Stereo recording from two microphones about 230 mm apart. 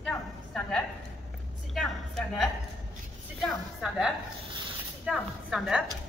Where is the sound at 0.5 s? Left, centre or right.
Centre.